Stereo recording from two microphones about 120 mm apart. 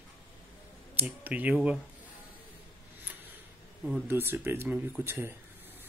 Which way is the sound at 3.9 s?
15° right (ahead or behind).